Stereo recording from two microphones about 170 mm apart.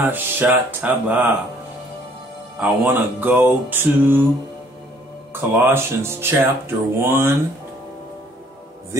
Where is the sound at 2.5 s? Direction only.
10° right (ahead or behind).